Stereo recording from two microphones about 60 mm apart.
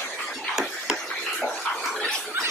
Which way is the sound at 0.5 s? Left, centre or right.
Centre.